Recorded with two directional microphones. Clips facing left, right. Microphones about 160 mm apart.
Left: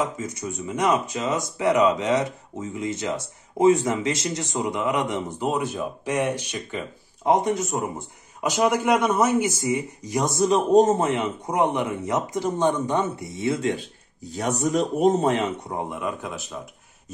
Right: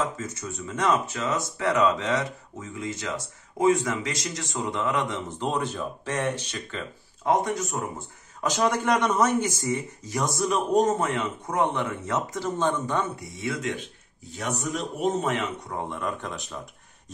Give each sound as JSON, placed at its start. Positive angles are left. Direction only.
{"t": 0.0, "sound": "speech", "side_deg": 15}
{"t": 8.4, "sound": "a man's voice", "side_deg": 10}
{"t": 15.9, "sound": "speech", "side_deg": 5}